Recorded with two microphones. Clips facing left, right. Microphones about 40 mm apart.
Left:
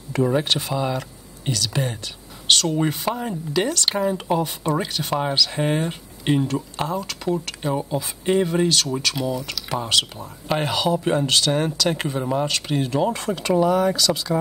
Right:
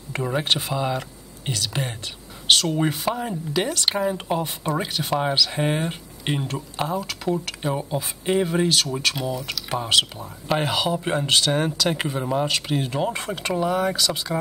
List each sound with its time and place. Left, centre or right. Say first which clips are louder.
0.2 s speech: left 4 dB; centre
1.5 s speech: left 3 dB; right
12.9 s speech: left 3 dB; centre
13.5 s speech: left 4 dB; centre